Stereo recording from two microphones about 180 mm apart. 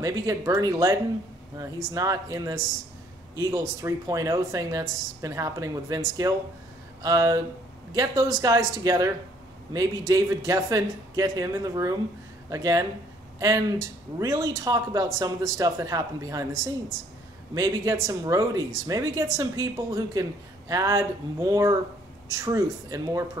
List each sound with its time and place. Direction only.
0.0 s speech: 15° right (ahead or behind)
2.0 s speech: 20° right (ahead or behind)